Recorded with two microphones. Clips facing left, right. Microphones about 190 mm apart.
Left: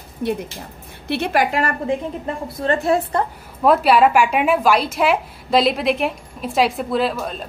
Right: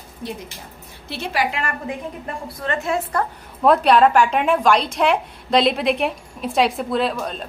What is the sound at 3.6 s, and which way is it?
A woman's voice, 5° left (ahead or behind).